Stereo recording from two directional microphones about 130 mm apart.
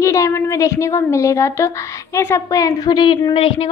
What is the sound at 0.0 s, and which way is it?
A woman's voice, 25° left (ahead or behind).